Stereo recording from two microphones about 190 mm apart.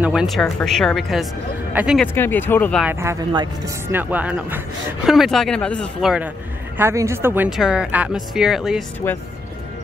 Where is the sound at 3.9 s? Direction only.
10° right (ahead or behind).